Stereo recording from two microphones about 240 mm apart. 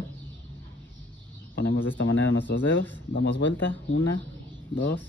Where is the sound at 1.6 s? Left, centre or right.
Left.